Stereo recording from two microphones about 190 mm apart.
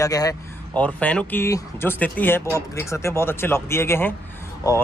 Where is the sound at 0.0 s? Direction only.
20° left (ahead or behind).